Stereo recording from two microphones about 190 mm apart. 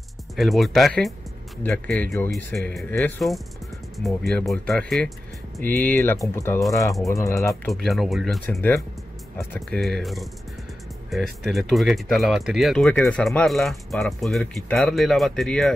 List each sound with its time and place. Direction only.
0.4 s speech: centre (ahead or behind)
2.3 s speech: centre (ahead or behind)
7.6 s speech: centre (ahead or behind)
8.5 s speech: 15° left (ahead or behind)